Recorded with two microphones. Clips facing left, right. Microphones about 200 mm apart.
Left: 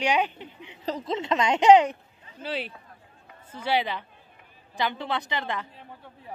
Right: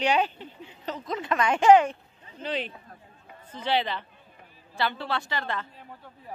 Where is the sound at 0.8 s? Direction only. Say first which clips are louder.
Left 3 dB; 30° left (ahead or behind).